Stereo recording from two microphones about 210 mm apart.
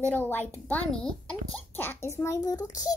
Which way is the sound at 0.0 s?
10° left (ahead or behind).